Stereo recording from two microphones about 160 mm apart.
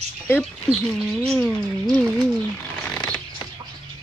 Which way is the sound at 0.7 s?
Centre (ahead or behind).